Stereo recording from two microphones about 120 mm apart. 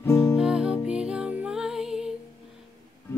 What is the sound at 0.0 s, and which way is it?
Music, 20° left (ahead or behind).